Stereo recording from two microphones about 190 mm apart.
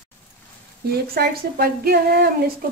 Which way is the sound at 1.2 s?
55° right (ahead or behind).